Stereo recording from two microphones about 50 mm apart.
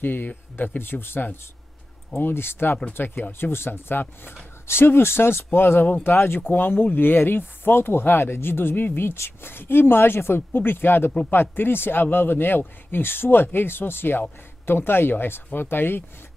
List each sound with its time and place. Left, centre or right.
0.0 s speech: left